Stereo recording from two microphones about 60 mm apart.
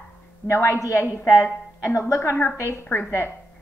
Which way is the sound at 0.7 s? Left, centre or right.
Left.